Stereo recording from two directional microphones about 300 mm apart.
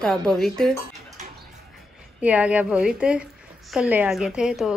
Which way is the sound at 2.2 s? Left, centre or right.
Centre.